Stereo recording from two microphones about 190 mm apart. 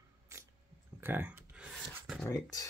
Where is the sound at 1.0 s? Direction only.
10° right (ahead or behind).